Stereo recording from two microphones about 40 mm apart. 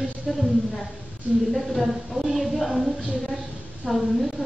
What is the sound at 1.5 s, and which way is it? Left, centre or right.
A woman's voice, centre.